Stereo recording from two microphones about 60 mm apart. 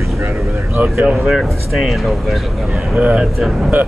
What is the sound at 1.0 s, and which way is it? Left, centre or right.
Speech, centre.